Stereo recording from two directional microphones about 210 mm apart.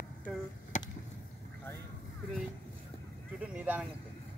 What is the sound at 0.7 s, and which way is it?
Chop, 35° left (ahead or behind).